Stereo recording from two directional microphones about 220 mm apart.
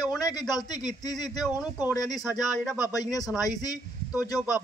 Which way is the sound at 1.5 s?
10° right (ahead or behind).